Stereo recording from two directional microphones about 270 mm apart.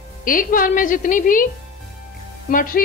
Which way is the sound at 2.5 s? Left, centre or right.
Left.